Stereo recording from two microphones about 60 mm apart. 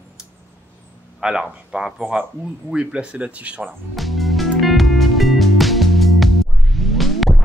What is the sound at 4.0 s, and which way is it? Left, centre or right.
Music, centre.